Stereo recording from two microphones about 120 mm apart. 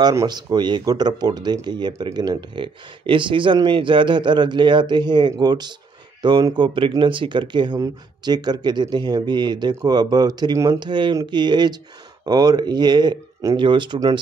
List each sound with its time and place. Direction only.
0.3 s speech: 35° right (ahead or behind)